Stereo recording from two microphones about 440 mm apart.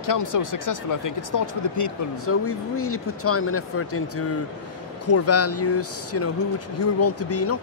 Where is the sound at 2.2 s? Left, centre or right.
Left.